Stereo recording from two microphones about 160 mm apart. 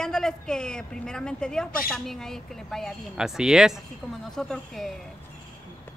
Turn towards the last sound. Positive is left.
turn(degrees=0)  # may be behind; listen again after turning